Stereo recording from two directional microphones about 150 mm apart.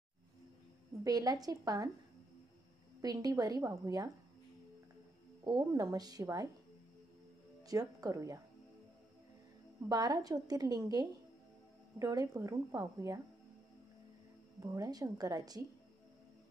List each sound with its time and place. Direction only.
1.0 s a woman's voice: 25° right (ahead or behind)
3.0 s a woman's voice: 25° right (ahead or behind)
5.4 s a woman's voice: 25° right (ahead or behind)
7.6 s speech: 25° right (ahead or behind)
9.8 s a woman's voice: 25° right (ahead or behind)
14.6 s a woman's voice: 20° right (ahead or behind)